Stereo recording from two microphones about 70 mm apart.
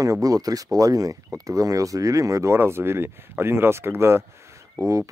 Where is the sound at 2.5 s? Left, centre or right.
Right.